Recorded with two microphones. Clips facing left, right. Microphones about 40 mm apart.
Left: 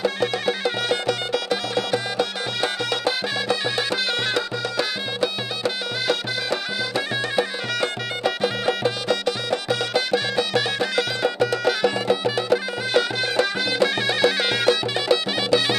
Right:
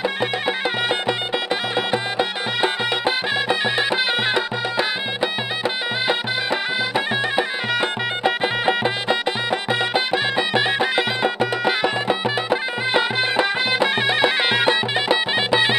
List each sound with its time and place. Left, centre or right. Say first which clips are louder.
0.0 s music: even; right